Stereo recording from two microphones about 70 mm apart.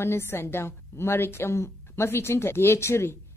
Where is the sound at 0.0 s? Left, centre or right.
Left.